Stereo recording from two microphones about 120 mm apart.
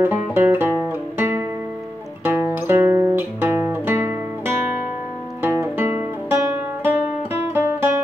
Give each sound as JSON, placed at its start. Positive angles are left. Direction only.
{"t": 0.0, "sound": "music", "side_deg": -20}
{"t": 7.5, "sound": "music", "side_deg": -15}